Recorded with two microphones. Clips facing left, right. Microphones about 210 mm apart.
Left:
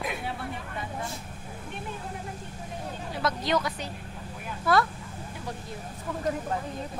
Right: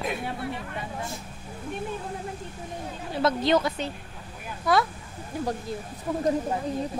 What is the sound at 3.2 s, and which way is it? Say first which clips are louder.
Speech: right 5 dB; 25° right (ahead or behind).